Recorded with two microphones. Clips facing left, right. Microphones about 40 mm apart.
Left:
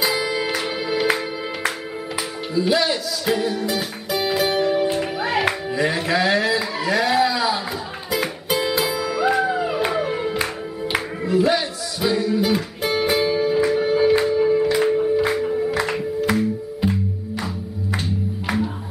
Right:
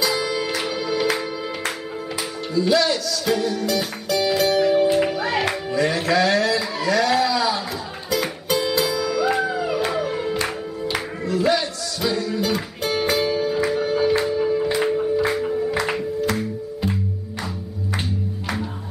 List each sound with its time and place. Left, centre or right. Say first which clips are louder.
0.0 s music: left 1 dB; centre
2.5 s music: right 1 dB; centre